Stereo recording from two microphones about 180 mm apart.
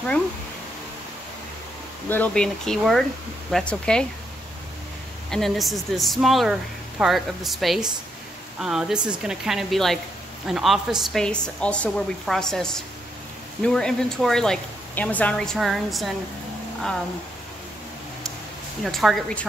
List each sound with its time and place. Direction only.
2.0 s speech: 10° left (ahead or behind)
5.3 s speech: centre (ahead or behind)
18.9 s speech: centre (ahead or behind)